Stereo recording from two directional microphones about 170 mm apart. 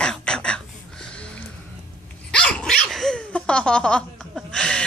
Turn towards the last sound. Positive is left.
turn(degrees=5)  # may be behind; listen again after turning